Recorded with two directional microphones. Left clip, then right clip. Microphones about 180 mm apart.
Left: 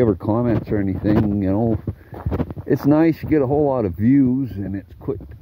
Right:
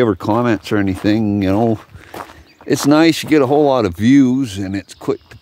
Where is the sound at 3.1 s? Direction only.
35° right (ahead or behind).